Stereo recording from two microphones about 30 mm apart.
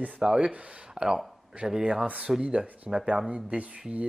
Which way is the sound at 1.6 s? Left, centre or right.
Centre.